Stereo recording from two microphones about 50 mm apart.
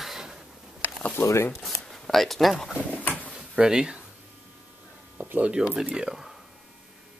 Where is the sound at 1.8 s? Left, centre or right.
Centre.